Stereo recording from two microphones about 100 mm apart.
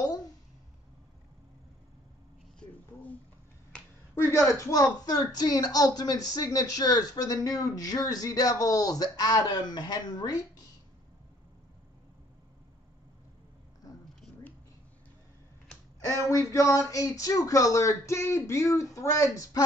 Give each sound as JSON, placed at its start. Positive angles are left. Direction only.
{"t": 4.1, "sound": "a woman's voice", "side_deg": 25}
{"t": 16.2, "sound": "a woman's voice", "side_deg": 30}